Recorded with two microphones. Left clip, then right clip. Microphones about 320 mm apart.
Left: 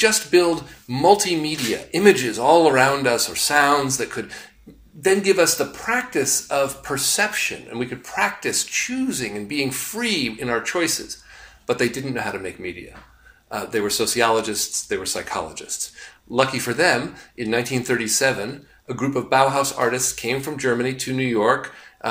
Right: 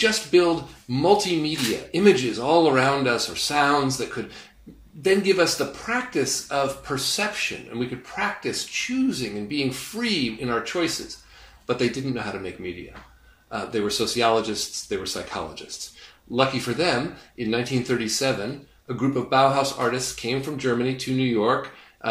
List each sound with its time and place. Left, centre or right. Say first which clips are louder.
0.0 s speech: left 2 dB; centre
5.0 s speech: left 3 dB; centre
22.0 s dog: left 2 dB; left